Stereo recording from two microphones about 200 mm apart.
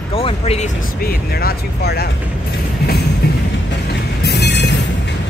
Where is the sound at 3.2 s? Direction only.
50° left (ahead or behind).